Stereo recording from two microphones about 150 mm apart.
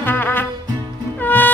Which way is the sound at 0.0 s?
15° left (ahead or behind).